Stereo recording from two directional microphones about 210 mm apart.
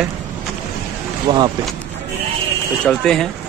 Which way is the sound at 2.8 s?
5° left (ahead or behind).